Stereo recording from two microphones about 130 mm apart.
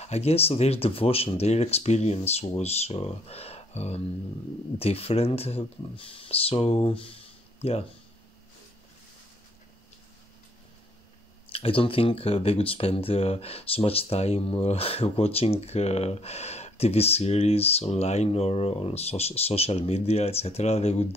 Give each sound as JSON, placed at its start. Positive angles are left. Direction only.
{"t": 0.0, "sound": "speech", "side_deg": 55}
{"t": 11.5, "sound": "speech", "side_deg": 45}